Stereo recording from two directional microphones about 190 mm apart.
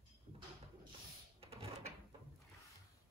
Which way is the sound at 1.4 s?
30° right (ahead or behind).